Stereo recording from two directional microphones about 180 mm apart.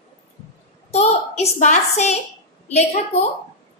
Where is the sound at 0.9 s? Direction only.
35° left (ahead or behind).